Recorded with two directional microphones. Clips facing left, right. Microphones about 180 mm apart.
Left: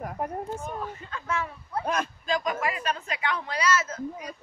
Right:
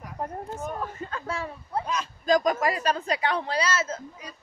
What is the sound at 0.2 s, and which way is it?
Speech, 15° left (ahead or behind).